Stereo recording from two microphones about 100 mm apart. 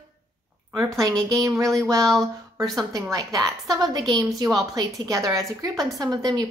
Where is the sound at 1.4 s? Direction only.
30° right (ahead or behind).